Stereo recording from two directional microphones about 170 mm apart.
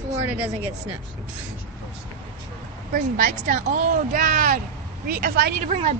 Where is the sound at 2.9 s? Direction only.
55° right (ahead or behind).